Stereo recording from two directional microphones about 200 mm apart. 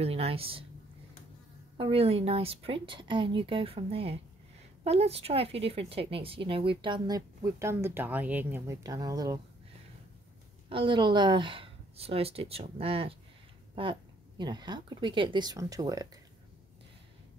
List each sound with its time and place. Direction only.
0.0 s speech: 30° right (ahead or behind)
1.8 s speech: 30° right (ahead or behind)
10.7 s speech: 25° right (ahead or behind)
14.4 s speech: 20° right (ahead or behind)